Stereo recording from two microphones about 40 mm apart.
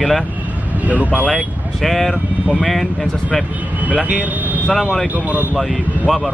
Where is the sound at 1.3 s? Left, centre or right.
Centre.